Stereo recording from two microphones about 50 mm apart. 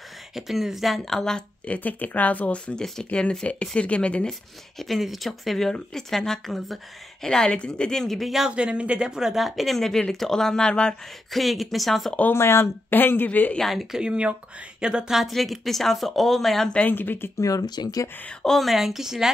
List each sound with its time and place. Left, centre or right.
0.3 s speech: centre
1.7 s speech: left
4.3 s speech: centre
8.5 s speech: centre
11.3 s speech: centre
12.4 s speech: left
12.9 s speech: left
13.6 s speech: centre
13.9 s speech: centre
16.9 s speech: left
18.4 s speech: centre